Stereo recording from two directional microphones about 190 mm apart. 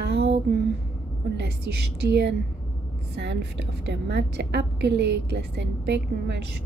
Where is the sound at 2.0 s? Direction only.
60° right (ahead or behind).